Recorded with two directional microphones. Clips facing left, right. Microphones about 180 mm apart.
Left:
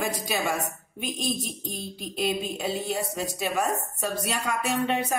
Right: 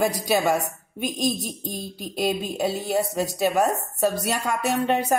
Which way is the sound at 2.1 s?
40° right (ahead or behind).